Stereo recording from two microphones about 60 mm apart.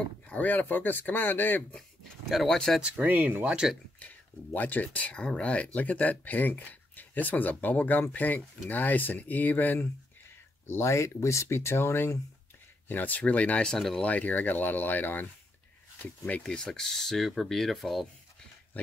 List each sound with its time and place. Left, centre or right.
0.3 s speech: left
1.8 s speech: centre
2.8 s speech: right
3.4 s speech: centre
4.0 s speech: left
10.7 s speech: left
12.8 s speech: left
13.7 s speech: centre
14.0 s speech: left
16.4 s speech: centre